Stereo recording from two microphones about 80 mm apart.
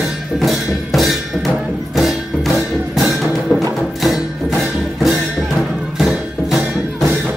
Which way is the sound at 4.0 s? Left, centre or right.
Centre.